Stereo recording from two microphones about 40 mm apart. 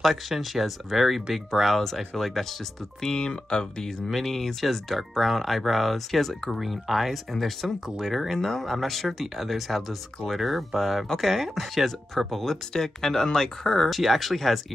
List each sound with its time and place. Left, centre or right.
0.0 s speech: centre
3.0 s speech: centre
4.3 s speech: centre
13.8 s speech: centre